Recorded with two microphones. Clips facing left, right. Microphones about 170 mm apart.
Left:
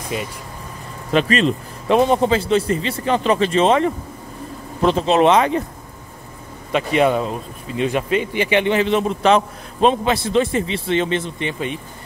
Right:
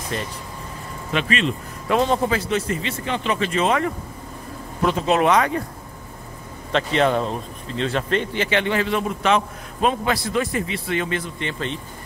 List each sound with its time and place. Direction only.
0.1 s speech: 10° left (ahead or behind)
1.1 s speech: 40° left (ahead or behind)
1.9 s a man's voice: 20° left (ahead or behind)
6.7 s a man's voice: 10° left (ahead or behind)